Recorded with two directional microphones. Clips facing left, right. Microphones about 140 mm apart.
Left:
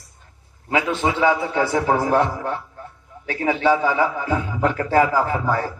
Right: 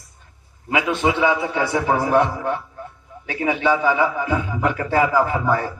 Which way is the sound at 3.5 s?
40° left (ahead or behind).